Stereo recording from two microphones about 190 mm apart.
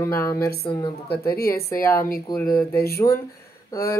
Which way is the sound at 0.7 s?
30° left (ahead or behind).